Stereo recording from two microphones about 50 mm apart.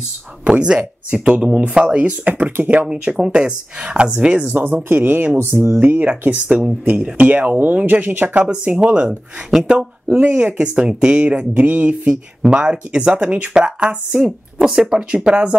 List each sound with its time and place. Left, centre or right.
0.5 s speech: centre
4.8 s speech: right
6.3 s speech: right
8.4 s speech: right
10.0 s speech: right
14.7 s speech: centre
15.0 s speech: right